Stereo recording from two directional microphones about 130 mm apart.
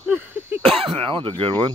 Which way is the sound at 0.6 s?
45° right (ahead or behind).